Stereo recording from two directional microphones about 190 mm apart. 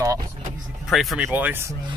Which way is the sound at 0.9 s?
Centre (ahead or behind).